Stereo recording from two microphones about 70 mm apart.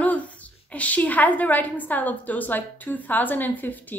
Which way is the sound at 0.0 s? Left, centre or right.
Left.